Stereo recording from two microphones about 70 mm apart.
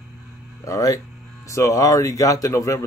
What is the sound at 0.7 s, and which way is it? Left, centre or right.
Speech, left.